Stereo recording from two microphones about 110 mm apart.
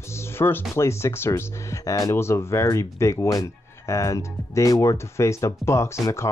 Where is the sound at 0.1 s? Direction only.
20° left (ahead or behind).